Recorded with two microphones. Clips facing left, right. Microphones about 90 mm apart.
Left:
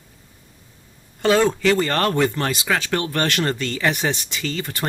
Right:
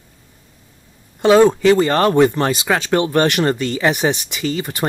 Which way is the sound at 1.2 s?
20° right (ahead or behind).